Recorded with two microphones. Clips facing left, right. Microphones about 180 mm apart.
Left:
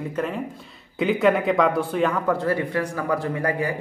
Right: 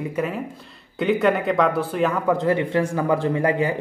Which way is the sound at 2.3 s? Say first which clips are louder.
Right 3 dB; 20° right (ahead or behind).